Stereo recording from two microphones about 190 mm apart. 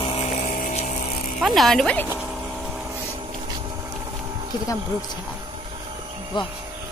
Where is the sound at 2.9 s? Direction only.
20° right (ahead or behind).